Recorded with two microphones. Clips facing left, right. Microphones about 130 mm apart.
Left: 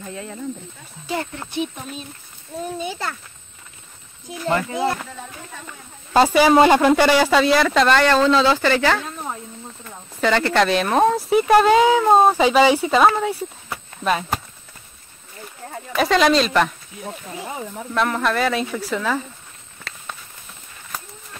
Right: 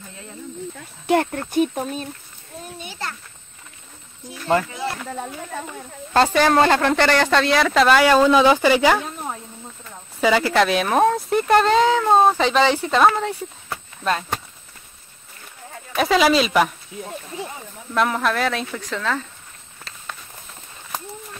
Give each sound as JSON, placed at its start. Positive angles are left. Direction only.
{"t": 1.0, "sound": "speech", "side_deg": -55}
{"t": 6.1, "sound": "speech", "side_deg": 10}
{"t": 10.2, "sound": "speech", "side_deg": -5}
{"t": 16.0, "sound": "speech", "side_deg": -5}
{"t": 17.5, "sound": "speech", "side_deg": 90}
{"t": 17.9, "sound": "speech", "side_deg": 0}